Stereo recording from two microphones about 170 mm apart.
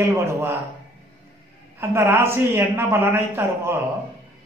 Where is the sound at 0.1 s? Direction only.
15° right (ahead or behind).